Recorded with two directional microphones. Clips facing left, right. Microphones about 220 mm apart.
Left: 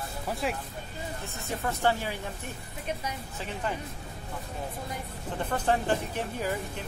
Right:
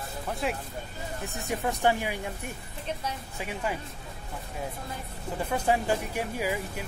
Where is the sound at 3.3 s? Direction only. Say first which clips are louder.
Right 2 dB; 10° right (ahead or behind).